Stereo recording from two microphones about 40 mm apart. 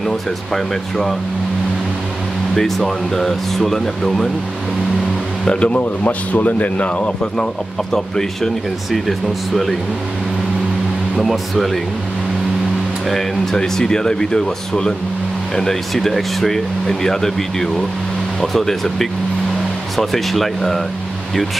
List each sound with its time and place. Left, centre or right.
0.0 s speech: centre
2.5 s speech: centre
5.4 s speech: left
5.7 s a man's voice: left
7.9 s speech: centre
11.5 s speech: centre
13.1 s speech: centre